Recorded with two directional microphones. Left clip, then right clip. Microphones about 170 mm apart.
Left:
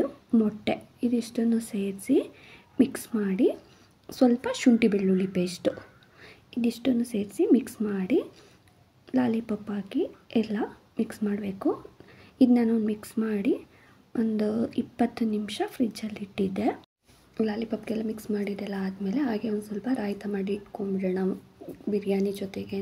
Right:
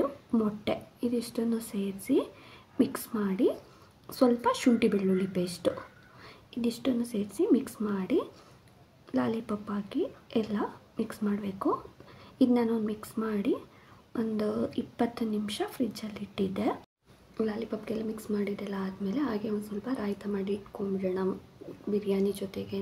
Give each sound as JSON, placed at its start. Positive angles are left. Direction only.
{"t": 0.0, "sound": "a woman's voice", "side_deg": 20}